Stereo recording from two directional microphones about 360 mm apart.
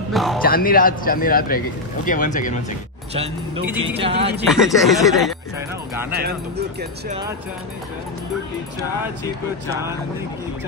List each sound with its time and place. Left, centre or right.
0.1 s music: centre
0.4 s a man's voice: left
4.0 s speech: centre
4.5 s speech: centre
6.1 s speech: right